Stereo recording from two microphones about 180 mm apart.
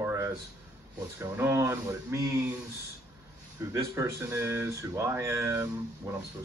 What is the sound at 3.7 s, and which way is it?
Speech, 15° right (ahead or behind).